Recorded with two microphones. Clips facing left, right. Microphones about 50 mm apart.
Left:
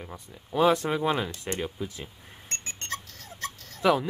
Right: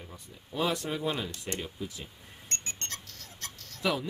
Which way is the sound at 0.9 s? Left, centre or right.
Left.